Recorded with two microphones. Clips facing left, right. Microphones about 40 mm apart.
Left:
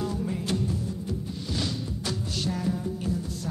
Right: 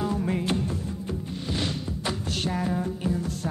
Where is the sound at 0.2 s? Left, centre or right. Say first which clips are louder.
Right 4 dB; right.